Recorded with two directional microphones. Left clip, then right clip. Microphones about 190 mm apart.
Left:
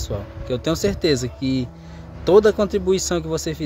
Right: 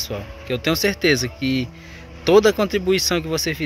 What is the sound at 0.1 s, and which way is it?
Speech, 5° left (ahead or behind).